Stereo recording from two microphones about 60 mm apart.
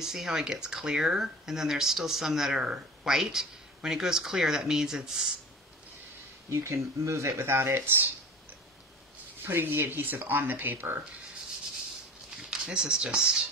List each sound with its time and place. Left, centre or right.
0.0 s speech: centre
6.5 s speech: right
9.4 s speech: right
12.4 s speech: centre